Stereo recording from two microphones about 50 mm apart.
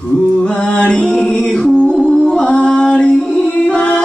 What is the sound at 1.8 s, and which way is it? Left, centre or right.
Music, centre.